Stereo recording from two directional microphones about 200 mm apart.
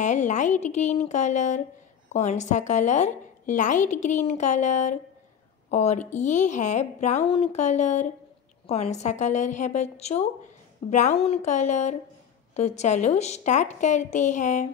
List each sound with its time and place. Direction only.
0.0 s a woman's voice: 35° left (ahead or behind)